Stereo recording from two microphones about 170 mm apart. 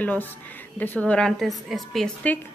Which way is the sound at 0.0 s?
10° left (ahead or behind).